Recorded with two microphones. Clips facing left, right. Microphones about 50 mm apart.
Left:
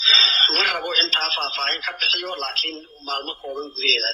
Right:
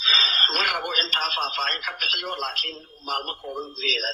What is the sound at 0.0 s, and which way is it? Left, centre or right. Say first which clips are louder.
Radio: left 2 dB; left.